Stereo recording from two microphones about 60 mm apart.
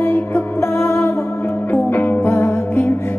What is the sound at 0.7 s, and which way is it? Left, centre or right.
Music, left.